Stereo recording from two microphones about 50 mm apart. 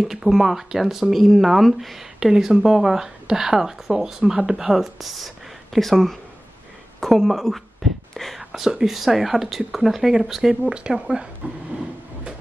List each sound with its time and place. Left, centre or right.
0.0 s speech: centre
8.1 s whispering: centre
8.4 s speech: centre
10.7 s speech: centre
11.4 s a sound: right